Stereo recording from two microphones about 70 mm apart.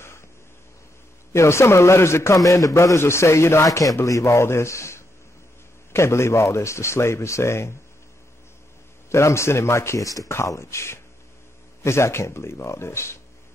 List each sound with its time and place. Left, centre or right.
1.3 s speech: left
3.6 s a man's voice: left
9.1 s a man's voice: left
10.3 s speech: left